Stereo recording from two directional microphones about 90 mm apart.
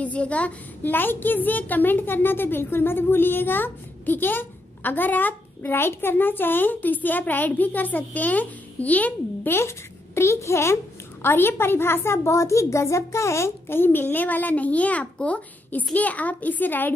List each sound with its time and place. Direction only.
0.0 s a woman's voice: 15° left (ahead or behind)